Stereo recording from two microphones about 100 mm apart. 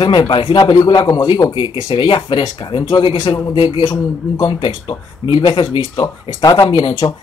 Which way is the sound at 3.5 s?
80° left.